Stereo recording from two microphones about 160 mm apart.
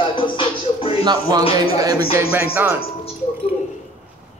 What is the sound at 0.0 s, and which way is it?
Music, 30° left (ahead or behind).